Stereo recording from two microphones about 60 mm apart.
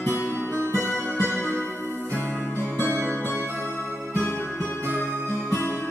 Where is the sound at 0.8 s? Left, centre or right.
Left.